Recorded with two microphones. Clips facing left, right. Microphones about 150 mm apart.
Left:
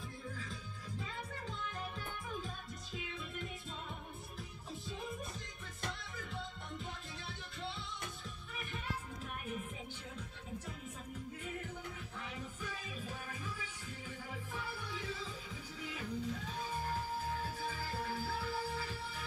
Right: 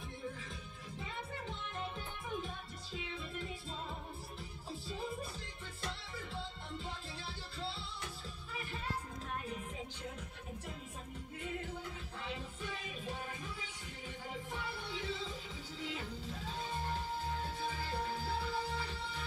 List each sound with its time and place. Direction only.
0.4 s music: 25° right (ahead or behind)
7.2 s music: 30° right (ahead or behind)
12.4 s music: 25° right (ahead or behind)